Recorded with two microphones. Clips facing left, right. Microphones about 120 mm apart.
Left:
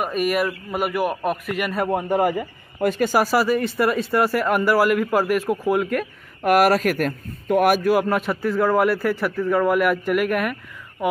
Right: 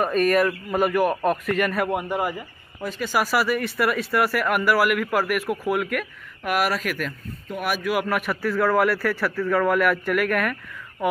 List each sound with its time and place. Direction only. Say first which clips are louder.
0.0 s a man's voice: right 2 dB; 10° left (ahead or behind)
1.8 s a man's voice: left 2 dB; 30° left (ahead or behind)
2.0 s speech: left 6 dB; 50° left (ahead or behind)
3.2 s a man's voice: left 1 dB; 30° left (ahead or behind)
6.4 s speech: left 7 dB; 45° left (ahead or behind)
7.4 s speech: left 11 dB; 65° left (ahead or behind)
7.7 s a man's voice: left 5 dB; 35° left (ahead or behind)